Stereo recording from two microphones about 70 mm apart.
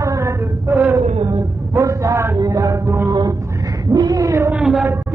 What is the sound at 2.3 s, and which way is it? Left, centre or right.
Mantra, right.